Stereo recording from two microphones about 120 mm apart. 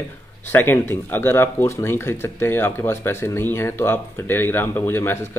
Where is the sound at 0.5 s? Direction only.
20° left (ahead or behind).